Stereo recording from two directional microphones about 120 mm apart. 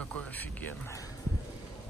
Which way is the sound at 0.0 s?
10° left (ahead or behind).